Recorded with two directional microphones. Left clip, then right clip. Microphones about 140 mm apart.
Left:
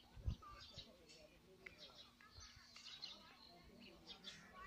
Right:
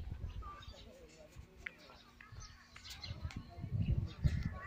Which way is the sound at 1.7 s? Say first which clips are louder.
Right 12 dB; 10° left (ahead or behind).